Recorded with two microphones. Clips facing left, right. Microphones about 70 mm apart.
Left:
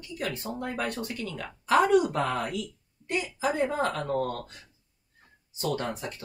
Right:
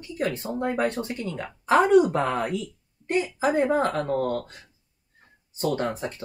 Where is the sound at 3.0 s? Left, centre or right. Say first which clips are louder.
Right 5 dB; right.